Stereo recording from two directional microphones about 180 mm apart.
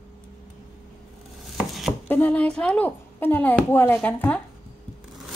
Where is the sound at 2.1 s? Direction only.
10° left (ahead or behind).